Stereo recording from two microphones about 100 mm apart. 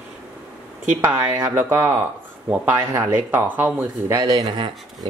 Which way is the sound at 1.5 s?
20° right (ahead or behind).